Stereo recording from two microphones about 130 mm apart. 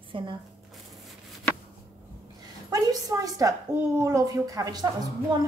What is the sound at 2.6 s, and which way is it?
A woman's voice, 25° right (ahead or behind).